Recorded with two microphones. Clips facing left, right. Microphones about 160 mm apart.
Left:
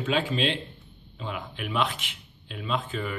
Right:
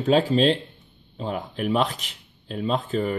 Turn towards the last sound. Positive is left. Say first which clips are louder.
# right 6 dB
turn(degrees=-35)  # may be behind; listen again after turning